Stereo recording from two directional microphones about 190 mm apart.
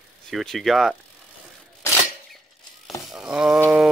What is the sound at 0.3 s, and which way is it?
Speech, centre (ahead or behind).